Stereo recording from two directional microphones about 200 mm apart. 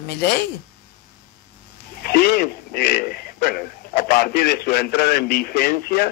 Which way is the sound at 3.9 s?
50° left (ahead or behind).